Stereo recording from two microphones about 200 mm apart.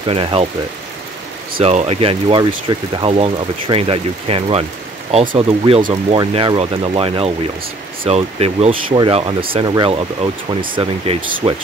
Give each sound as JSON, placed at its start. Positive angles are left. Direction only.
{"t": 0.0, "sound": "speech", "side_deg": -25}
{"t": 1.6, "sound": "speech", "side_deg": -30}